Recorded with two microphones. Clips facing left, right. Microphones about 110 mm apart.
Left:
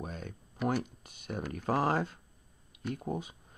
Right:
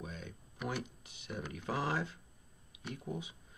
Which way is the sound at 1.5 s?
45° left (ahead or behind).